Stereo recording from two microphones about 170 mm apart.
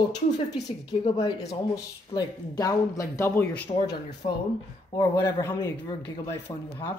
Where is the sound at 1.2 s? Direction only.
20° left (ahead or behind).